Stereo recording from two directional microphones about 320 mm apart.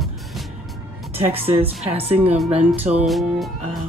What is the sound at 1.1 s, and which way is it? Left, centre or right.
Speech, centre.